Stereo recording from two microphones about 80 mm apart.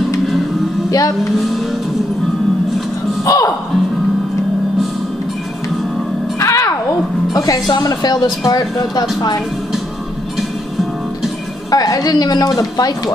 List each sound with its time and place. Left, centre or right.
0.8 s speech: left
3.3 s speech: left
6.4 s music: left
7.8 s speech: left
11.7 s speech: left